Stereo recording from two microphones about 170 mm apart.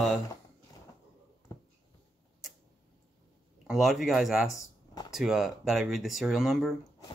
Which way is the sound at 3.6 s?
Centre (ahead or behind).